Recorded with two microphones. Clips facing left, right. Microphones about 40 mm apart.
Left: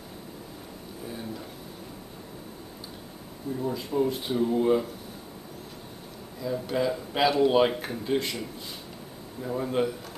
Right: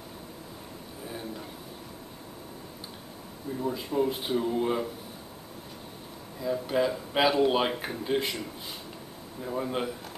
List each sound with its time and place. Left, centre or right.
3.6 s speech: centre
6.4 s speech: centre